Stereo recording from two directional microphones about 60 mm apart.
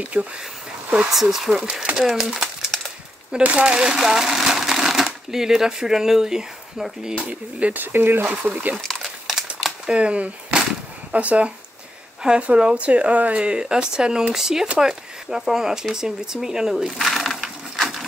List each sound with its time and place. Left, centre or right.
0.0 s speech: right
0.9 s speech: centre
3.4 s speech: centre
7.2 s speech: right
7.8 s speech: right
9.6 s a sound: centre
9.9 s speech: right; by 17.8 s centre